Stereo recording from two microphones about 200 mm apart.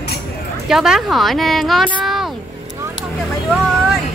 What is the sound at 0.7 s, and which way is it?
Speech, centre (ahead or behind).